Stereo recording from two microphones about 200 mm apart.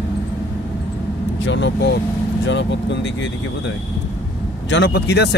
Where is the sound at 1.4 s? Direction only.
60° left (ahead or behind).